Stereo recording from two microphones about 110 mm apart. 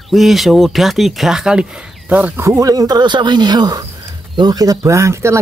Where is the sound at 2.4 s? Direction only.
30° right (ahead or behind).